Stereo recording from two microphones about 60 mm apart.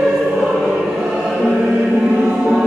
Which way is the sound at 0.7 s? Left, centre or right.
Centre.